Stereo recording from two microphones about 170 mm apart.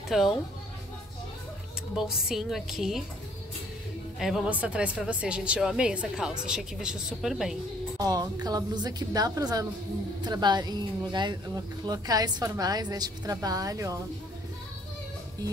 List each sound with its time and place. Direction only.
0.1 s a woman's voice: centre (ahead or behind)
2.0 s a woman's voice: 5° right (ahead or behind)
4.2 s a woman's voice: centre (ahead or behind)
8.0 s a woman's voice: 25° right (ahead or behind)